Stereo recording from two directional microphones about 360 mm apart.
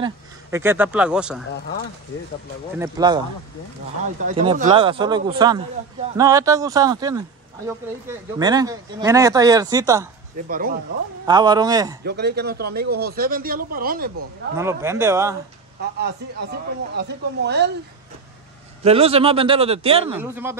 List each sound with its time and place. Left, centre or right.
0.0 s speech: centre
2.8 s speech: centre
4.2 s speech: centre
10.5 s a man's voice: right
11.2 s speech: centre
12.0 s a man's voice: right
14.6 s speech: centre
15.8 s a man's voice: right
18.9 s speech: centre